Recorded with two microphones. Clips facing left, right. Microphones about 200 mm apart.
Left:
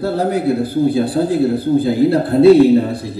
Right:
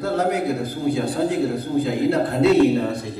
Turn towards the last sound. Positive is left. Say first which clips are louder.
# left 6 dB
turn(degrees=30)  # may be behind; listen again after turning